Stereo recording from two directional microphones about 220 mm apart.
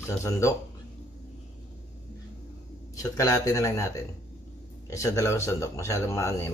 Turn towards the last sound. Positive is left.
turn(degrees=10)  # may be behind; listen again after turning